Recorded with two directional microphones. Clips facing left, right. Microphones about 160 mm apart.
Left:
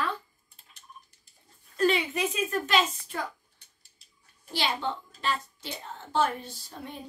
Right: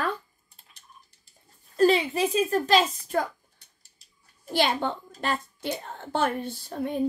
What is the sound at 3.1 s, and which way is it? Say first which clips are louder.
Speech: right 9 dB; 50° right (ahead or behind).